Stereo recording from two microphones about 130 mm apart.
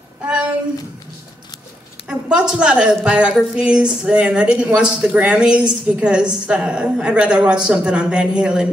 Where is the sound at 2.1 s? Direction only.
5° right (ahead or behind).